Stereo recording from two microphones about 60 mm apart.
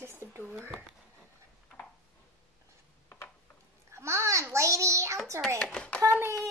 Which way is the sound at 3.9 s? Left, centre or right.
Right.